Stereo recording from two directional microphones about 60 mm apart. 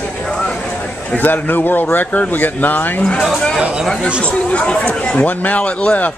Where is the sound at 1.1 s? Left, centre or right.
Left.